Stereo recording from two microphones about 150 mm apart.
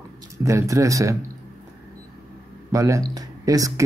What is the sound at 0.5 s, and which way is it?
Speech, 20° right (ahead or behind).